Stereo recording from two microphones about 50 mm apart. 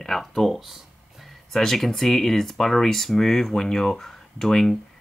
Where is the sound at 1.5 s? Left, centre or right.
Centre.